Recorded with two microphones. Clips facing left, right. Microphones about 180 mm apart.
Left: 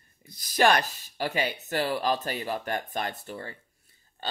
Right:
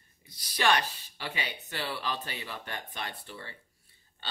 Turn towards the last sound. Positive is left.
turn(degrees=45)  # may be behind; listen again after turning